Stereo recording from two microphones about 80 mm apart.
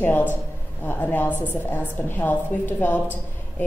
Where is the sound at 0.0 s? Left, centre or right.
Left.